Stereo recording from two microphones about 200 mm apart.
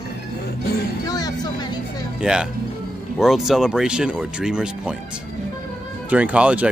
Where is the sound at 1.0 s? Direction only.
20° left (ahead or behind).